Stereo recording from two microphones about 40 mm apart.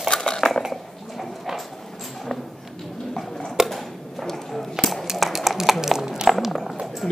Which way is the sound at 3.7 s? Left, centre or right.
Centre.